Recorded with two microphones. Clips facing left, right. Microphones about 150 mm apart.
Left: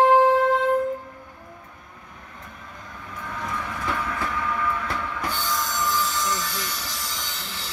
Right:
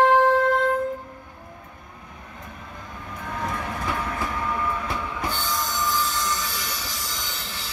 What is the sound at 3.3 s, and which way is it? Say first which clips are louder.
Train: right 2 dB; 45° right (ahead or behind).